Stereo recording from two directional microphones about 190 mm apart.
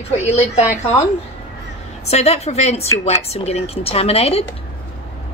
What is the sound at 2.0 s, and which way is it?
A woman's voice, 35° left (ahead or behind).